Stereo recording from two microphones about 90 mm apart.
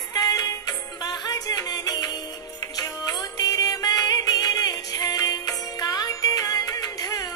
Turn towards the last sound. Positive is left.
turn(degrees=40)  # may be behind; listen again after turning